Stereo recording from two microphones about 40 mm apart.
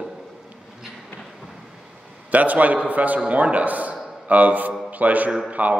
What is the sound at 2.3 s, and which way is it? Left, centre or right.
A man's voice, right.